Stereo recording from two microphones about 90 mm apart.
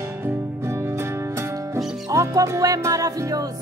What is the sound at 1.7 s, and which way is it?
Music, 35° right (ahead or behind).